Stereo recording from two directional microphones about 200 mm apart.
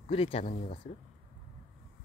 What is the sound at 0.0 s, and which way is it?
Speech, 30° left (ahead or behind).